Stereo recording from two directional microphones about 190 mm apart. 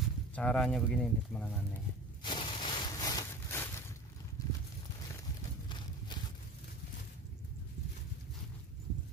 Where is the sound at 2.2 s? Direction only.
25° left (ahead or behind).